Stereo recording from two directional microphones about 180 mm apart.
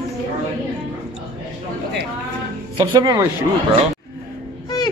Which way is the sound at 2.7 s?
20° right (ahead or behind).